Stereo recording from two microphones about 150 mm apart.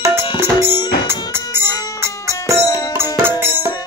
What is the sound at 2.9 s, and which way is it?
Music, 15° right (ahead or behind).